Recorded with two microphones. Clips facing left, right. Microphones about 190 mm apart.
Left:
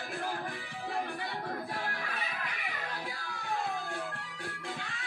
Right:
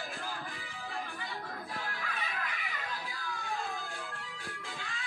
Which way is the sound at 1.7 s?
65° left (ahead or behind).